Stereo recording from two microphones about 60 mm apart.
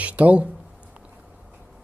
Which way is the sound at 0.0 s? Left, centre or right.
Right.